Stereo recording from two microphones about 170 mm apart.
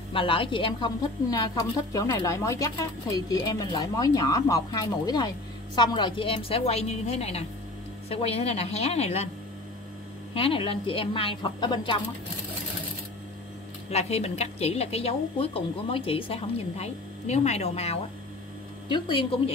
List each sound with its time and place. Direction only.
0.1 s a woman's voice: 30° left (ahead or behind)
10.3 s a woman's voice: 35° left (ahead or behind)
13.8 s a woman's voice: 40° left (ahead or behind)